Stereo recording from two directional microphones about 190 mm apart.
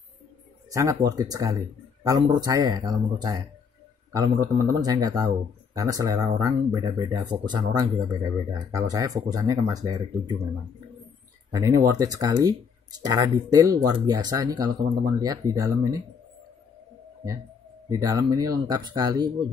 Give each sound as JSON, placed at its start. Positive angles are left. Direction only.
{"t": 0.7, "sound": "speech", "side_deg": -15}
{"t": 11.5, "sound": "speech", "side_deg": -15}
{"t": 17.8, "sound": "speech", "side_deg": -20}